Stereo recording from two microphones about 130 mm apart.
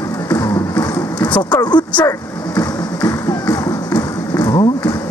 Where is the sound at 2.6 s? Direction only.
25° left (ahead or behind).